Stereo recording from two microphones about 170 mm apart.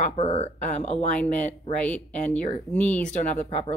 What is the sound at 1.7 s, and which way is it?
Speech, 10° left (ahead or behind).